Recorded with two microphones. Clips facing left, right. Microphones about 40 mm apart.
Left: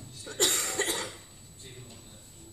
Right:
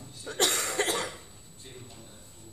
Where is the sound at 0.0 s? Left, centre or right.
Centre.